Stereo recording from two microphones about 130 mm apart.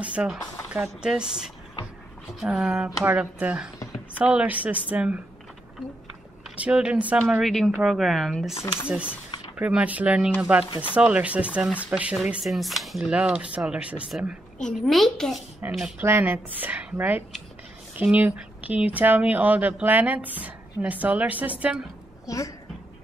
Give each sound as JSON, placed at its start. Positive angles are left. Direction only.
{"t": 0.0, "sound": "speech", "side_deg": -10}
{"t": 6.5, "sound": "speech", "side_deg": -10}
{"t": 7.2, "sound": "speech", "side_deg": 0}
{"t": 14.6, "sound": "speech", "side_deg": 0}
{"t": 16.0, "sound": "speech", "side_deg": -15}
{"t": 22.2, "sound": "a woman's voice", "side_deg": 25}